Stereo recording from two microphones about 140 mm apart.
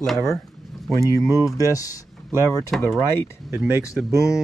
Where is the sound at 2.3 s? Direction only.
20° right (ahead or behind).